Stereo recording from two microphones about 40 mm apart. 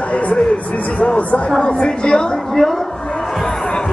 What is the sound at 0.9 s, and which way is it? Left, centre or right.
Speech, left.